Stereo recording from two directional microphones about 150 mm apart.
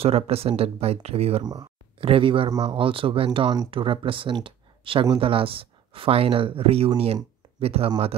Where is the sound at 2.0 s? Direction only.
35° right (ahead or behind).